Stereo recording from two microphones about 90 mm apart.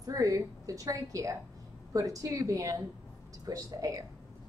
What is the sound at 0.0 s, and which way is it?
A woman's voice, 40° right (ahead or behind).